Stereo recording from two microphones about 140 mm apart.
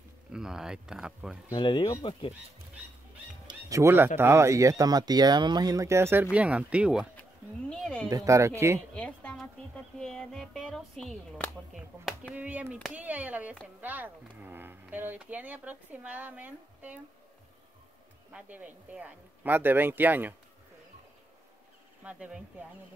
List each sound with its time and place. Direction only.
0.3 s speech: 5° right (ahead or behind)
1.5 s speech: 35° left (ahead or behind)
3.4 s music: 25° right (ahead or behind)
4.2 s speech: 20° right (ahead or behind)
7.7 s a woman's voice: 5° left (ahead or behind)
8.1 s speech: 20° right (ahead or behind)
8.9 s a sound: 10° left (ahead or behind)
9.9 s speech: 5° left (ahead or behind)
12.4 s speech: 10° right (ahead or behind)
18.3 s speech: 10° right (ahead or behind)
22.0 s speech: 10° right (ahead or behind)